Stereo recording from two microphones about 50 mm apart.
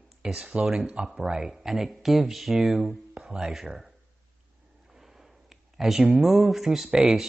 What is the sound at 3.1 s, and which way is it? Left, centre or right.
Speech, centre.